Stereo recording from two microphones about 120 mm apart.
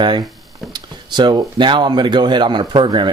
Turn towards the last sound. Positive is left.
turn(degrees=-40)  # may be behind; listen again after turning